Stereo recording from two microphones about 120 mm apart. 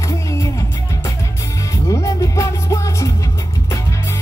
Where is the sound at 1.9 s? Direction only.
25° left (ahead or behind).